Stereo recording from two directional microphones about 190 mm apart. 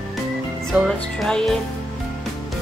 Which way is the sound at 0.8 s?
Centre (ahead or behind).